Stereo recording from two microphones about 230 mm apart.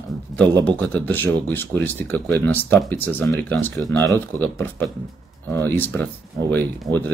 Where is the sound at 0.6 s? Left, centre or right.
Centre.